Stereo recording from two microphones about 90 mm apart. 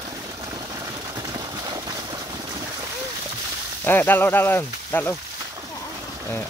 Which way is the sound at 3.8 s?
20° left (ahead or behind).